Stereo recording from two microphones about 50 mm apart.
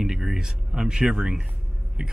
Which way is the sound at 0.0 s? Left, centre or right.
Centre.